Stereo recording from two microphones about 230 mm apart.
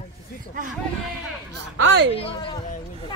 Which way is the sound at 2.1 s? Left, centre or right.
Left.